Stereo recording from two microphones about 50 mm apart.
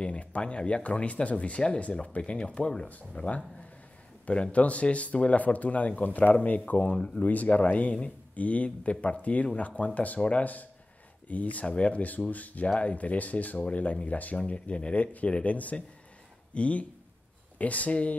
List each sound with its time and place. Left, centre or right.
0.0 s speech: left